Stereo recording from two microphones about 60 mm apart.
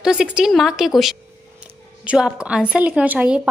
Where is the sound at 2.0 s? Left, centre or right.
Centre.